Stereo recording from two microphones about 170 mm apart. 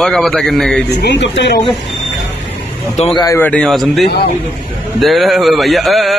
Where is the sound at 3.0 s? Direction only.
40° left (ahead or behind).